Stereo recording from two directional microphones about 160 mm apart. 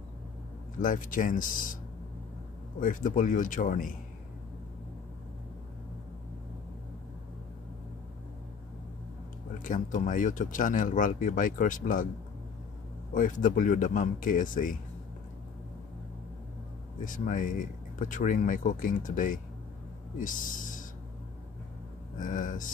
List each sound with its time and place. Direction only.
0.7 s speech: 55° left (ahead or behind)
2.8 s speech: 55° left (ahead or behind)
9.6 s speech: 55° left (ahead or behind)
13.1 s speech: 55° left (ahead or behind)
17.0 s speech: 55° left (ahead or behind)
22.2 s speech: 55° left (ahead or behind)